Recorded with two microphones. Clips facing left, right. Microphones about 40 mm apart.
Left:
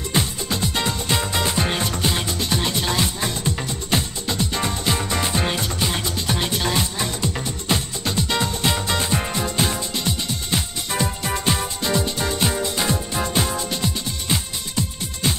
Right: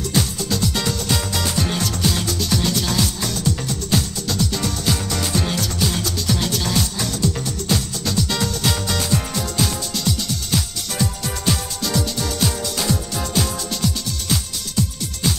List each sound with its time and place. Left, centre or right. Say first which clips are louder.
0.1 s music: even; left